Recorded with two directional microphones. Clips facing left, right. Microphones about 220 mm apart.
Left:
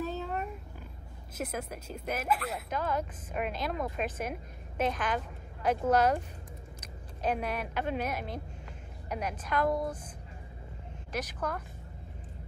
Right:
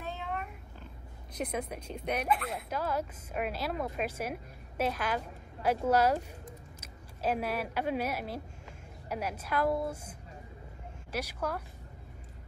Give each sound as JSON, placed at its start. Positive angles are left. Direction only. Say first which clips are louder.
{"t": 0.0, "sound": "cat", "louder": "left 6 dB", "side_deg": 40}
{"t": 1.4, "sound": "speech", "louder": "right 2 dB", "side_deg": 5}
{"t": 2.7, "sound": "a woman's voice", "louder": "even", "side_deg": -5}